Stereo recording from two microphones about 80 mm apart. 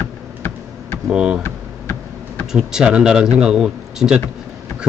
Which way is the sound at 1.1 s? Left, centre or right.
Centre.